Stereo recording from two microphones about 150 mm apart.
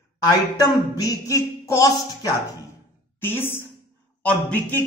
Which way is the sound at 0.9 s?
20° left (ahead or behind).